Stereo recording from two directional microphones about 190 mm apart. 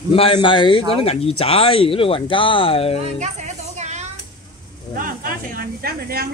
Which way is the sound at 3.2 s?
40° right (ahead or behind).